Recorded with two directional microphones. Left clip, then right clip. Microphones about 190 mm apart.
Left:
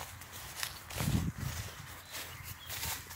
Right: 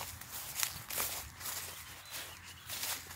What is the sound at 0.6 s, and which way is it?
Walk, 35° right (ahead or behind).